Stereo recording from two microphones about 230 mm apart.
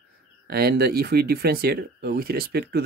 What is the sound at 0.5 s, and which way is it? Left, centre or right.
Speech, right.